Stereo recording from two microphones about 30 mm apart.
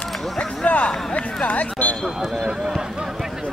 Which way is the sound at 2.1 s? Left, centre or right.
Centre.